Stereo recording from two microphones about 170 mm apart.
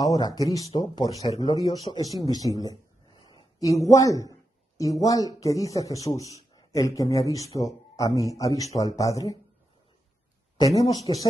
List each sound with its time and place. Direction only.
0.0 s a man's voice: 20° left (ahead or behind)
2.3 s a sound: 20° left (ahead or behind)
5.0 s a man's voice: 20° left (ahead or behind)
10.6 s a man's voice: 20° left (ahead or behind)